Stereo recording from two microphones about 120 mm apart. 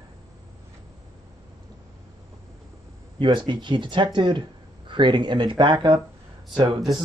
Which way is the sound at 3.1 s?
40° right (ahead or behind).